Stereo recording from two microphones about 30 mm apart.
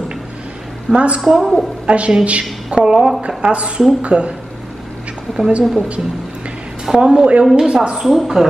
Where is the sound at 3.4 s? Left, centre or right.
Right.